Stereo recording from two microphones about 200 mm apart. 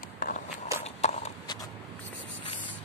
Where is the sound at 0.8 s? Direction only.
35° left (ahead or behind).